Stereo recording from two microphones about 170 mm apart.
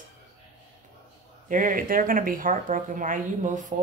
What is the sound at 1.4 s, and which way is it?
Speech, 50° right (ahead or behind).